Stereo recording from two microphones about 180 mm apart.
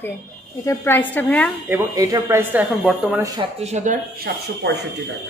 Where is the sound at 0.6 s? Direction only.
10° left (ahead or behind).